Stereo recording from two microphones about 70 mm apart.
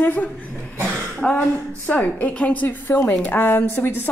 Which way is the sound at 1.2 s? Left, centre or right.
Centre.